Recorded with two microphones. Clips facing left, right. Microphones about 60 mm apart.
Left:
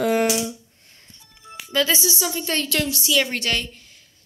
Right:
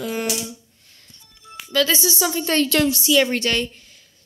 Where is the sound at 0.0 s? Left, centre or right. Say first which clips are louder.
Left 6 dB; left.